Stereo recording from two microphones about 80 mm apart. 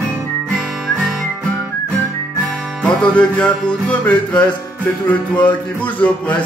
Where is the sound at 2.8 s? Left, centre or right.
Centre.